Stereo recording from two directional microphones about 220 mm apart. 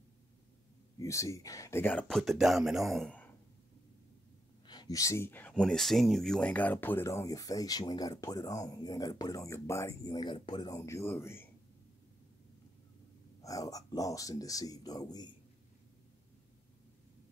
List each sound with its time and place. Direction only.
0.9 s speech: 15° left (ahead or behind)
4.6 s speech: 20° left (ahead or behind)
13.4 s speech: 15° left (ahead or behind)